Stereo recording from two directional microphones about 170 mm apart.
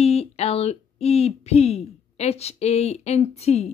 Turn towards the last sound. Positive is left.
turn(degrees=40)  # may be behind; listen again after turning